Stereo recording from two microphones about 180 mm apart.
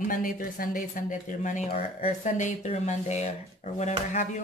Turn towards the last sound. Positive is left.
turn(degrees=40)  # may be behind; listen again after turning